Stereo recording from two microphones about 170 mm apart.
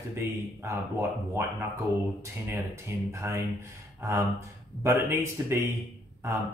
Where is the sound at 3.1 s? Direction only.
15° right (ahead or behind).